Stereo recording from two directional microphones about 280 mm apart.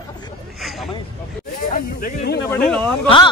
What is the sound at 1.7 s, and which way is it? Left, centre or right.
Speech, left.